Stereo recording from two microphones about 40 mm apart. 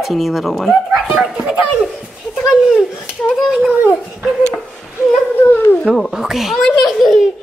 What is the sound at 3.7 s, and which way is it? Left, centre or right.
Speech, right.